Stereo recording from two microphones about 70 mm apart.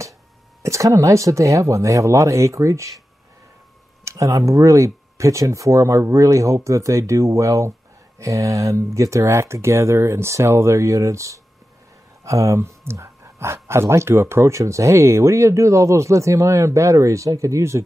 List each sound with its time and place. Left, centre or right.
0.6 s speech: right
4.0 s speech: right